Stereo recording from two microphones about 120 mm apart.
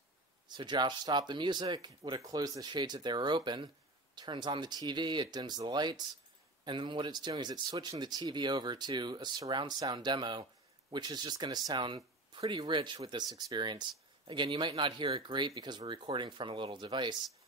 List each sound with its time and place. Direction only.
0.5 s speech: 40° right (ahead or behind)